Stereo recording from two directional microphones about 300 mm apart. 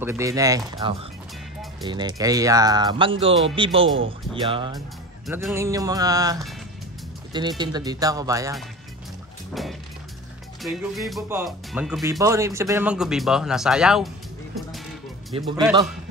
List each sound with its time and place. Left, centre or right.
0.0 s speech: centre
3.7 s speech: right
4.3 s speech: centre
4.7 s speech: centre
9.5 s music: centre
10.6 s speech: centre
15.3 s speech: centre